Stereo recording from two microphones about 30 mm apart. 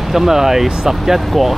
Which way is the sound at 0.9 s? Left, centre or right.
Centre.